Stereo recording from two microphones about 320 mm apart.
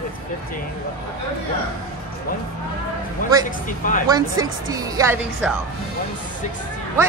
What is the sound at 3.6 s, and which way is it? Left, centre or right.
Speech, left.